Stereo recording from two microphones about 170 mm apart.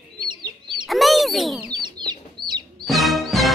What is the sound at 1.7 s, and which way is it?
Chicken, 25° right (ahead or behind).